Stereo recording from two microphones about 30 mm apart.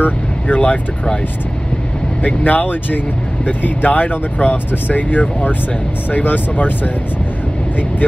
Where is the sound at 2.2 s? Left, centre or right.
Left.